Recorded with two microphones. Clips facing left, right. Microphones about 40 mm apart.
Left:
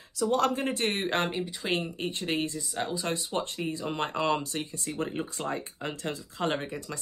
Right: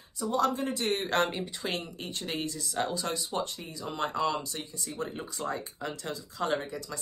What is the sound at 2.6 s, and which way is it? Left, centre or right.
Speech, centre.